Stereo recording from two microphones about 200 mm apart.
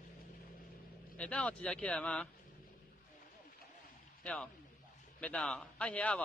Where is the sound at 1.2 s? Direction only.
5° left (ahead or behind).